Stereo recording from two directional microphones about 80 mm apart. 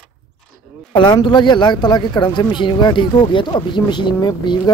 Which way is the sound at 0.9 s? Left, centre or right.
Left.